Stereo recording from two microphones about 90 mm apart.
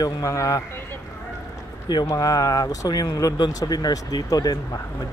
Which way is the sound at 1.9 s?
45° left (ahead or behind).